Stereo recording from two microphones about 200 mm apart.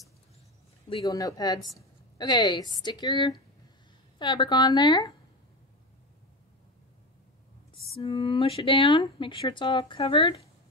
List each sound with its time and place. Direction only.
0.8 s a woman's voice: 20° left (ahead or behind)
7.9 s a woman's voice: 30° left (ahead or behind)